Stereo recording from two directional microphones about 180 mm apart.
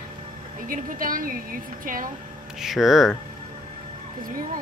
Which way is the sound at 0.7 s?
50° right (ahead or behind).